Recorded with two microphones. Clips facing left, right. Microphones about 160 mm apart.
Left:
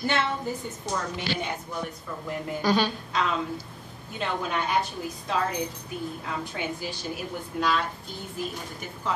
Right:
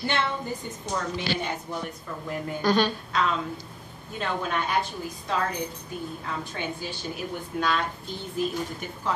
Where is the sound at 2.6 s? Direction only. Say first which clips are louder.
Right 1 dB; 10° left (ahead or behind).